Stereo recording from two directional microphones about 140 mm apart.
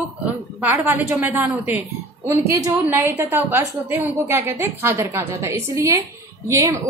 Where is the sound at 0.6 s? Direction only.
15° right (ahead or behind).